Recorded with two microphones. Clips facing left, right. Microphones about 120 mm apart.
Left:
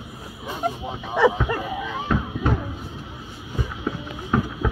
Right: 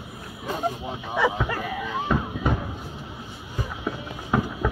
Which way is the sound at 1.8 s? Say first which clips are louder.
Even; 5° right (ahead or behind).